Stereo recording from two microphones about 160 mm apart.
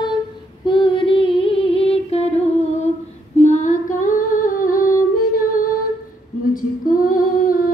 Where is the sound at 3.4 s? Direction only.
50° left (ahead or behind).